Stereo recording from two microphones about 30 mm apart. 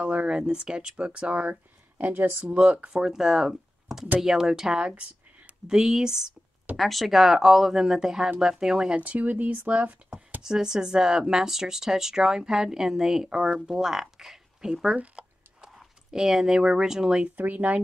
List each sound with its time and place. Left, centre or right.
0.0 s speech: right
0.3 s speech: right
1.4 s speech: right
2.4 s speech: right
3.1 s speech: centre
6.8 s speech: centre
7.1 s speech: centre; by 8.9 s right
8.9 s speech: right
9.2 s speech: right
10.4 s speech: right
15.2 s a sound: right
16.1 s speech: centre
17.4 s speech: right